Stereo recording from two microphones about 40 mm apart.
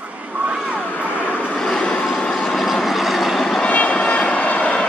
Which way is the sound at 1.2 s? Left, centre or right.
Left.